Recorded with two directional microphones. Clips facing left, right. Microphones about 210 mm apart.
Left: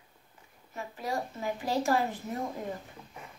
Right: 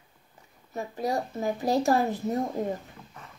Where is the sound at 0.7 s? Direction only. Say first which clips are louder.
Right 5 dB; 40° right (ahead or behind).